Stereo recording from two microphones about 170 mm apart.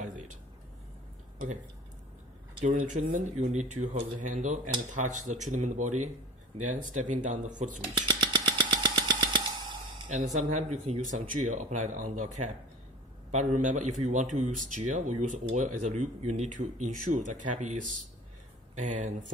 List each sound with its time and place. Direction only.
2.6 s speech: 50° right (ahead or behind)
8.1 s a sound: 25° right (ahead or behind)
10.2 s speech: 45° right (ahead or behind)